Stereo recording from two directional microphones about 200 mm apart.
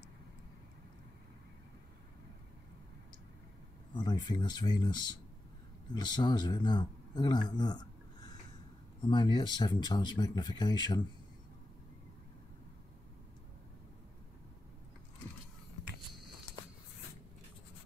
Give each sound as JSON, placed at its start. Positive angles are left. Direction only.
{"t": 3.9, "sound": "a man's voice", "side_deg": 20}